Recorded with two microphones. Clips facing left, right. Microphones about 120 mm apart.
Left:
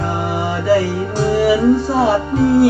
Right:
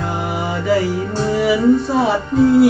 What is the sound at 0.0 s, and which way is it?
Music, centre (ahead or behind).